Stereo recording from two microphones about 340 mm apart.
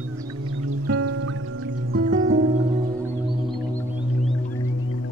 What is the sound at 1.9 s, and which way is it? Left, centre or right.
Music, right.